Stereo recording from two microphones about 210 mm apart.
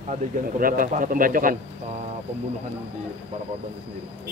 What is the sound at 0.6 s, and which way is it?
Speech, 40° right (ahead or behind).